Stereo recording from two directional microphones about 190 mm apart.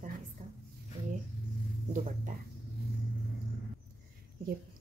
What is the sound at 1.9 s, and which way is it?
Speech, 40° right (ahead or behind).